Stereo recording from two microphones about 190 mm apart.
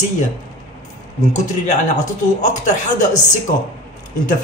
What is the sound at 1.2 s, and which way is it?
Speech, 40° left (ahead or behind).